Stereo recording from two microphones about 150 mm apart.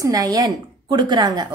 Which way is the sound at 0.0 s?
25° right (ahead or behind).